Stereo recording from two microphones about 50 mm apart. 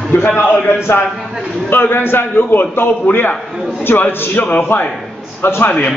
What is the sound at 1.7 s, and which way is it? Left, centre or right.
A man's voice, left.